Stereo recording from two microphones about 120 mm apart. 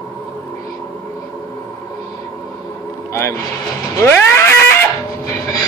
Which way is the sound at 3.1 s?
25° left (ahead or behind).